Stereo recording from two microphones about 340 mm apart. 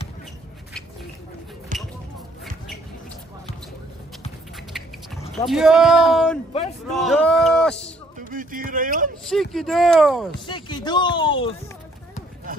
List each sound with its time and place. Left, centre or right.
1.7 s a sound: right
5.5 s speech: centre
8.3 s speech: right
9.2 s speech: centre
10.4 s speech: centre
12.5 s a sound: right